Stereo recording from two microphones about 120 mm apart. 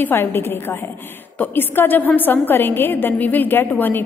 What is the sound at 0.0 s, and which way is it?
A woman's voice, 20° left (ahead or behind).